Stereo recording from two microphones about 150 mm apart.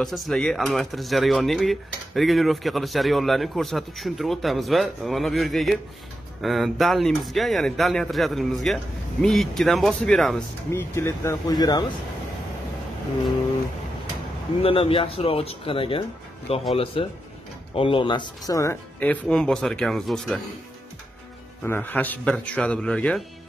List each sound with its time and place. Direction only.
0.0 s speech: centre (ahead or behind)
10.7 s speech: 20° left (ahead or behind)
14.6 s speech: 40° left (ahead or behind); by 20.3 s 5° left (ahead or behind)
21.6 s speech: 15° left (ahead or behind)